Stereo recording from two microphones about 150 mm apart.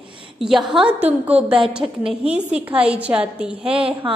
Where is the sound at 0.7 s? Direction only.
5° right (ahead or behind).